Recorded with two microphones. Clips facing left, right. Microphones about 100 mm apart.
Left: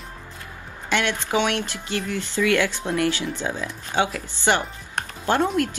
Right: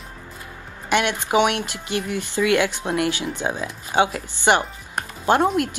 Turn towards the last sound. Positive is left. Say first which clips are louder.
# right 3 dB
turn(degrees=-20)  # may be behind; listen again after turning